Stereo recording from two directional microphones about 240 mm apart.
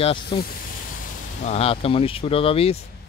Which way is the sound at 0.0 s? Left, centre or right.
Left.